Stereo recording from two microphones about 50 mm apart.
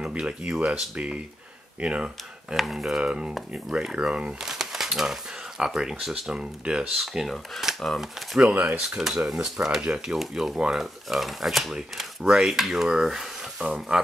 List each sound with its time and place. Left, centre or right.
0.0 s speech: centre
2.5 s speech: centre
6.3 s speech: centre
7.0 s speech: centre
8.4 s speech: right
8.8 s speech: centre
13.6 s speech: right